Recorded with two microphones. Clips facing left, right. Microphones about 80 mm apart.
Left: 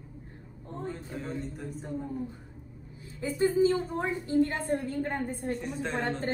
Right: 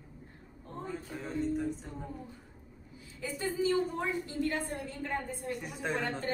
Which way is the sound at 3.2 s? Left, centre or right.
Left.